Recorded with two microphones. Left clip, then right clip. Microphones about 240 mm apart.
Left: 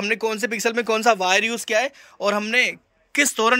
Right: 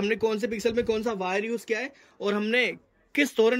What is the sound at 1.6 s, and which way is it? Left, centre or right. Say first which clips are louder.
Speech: left 9 dB; centre.